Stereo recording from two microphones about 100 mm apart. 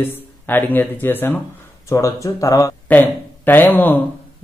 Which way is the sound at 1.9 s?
30° left (ahead or behind).